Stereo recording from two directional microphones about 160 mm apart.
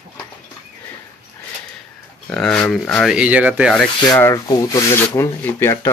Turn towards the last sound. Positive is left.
turn(degrees=15)  # may be behind; listen again after turning